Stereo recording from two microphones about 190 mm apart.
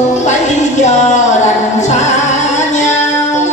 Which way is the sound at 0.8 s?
40° left (ahead or behind).